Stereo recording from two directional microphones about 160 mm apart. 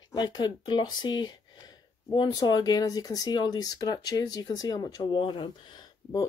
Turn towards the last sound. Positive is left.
turn(degrees=25)  # may be behind; listen again after turning